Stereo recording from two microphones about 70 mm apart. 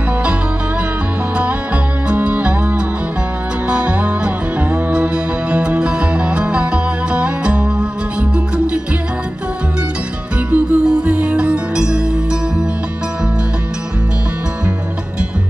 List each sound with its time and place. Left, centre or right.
2.0 s music: right
10.5 s music: centre